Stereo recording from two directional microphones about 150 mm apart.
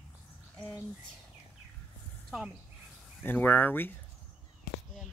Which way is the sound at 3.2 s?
15° left (ahead or behind).